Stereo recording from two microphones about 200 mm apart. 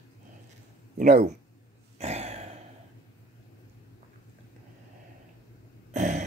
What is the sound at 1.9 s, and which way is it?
Throat clearing, 30° right (ahead or behind).